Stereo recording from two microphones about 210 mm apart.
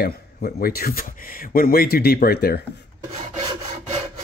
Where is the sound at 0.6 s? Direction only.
45° left (ahead or behind).